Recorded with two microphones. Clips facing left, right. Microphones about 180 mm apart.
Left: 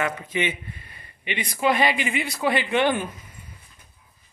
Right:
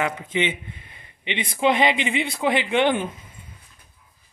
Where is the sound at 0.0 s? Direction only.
20° right (ahead or behind).